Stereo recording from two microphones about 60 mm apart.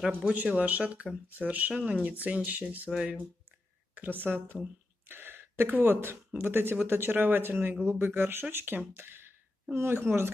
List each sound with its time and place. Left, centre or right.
0.2 s speech: right
2.9 s speech: centre
3.9 s speech: right